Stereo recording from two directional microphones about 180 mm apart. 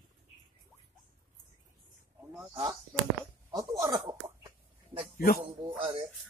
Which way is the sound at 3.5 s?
15° right (ahead or behind).